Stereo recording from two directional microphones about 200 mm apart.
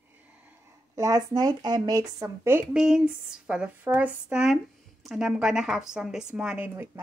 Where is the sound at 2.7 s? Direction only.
5° right (ahead or behind).